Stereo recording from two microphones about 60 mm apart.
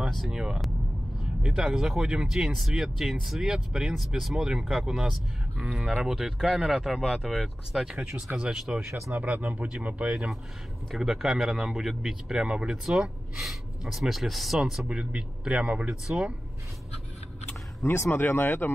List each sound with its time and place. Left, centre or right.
0.3 s speech: centre
9.1 s speech: right
11.0 s speech: centre
14.9 s speech: centre
17.8 s speech: left